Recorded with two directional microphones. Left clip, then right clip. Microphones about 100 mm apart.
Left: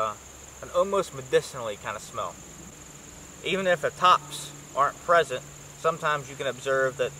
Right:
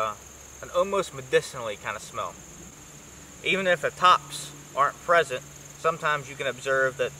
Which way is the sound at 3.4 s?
Centre (ahead or behind).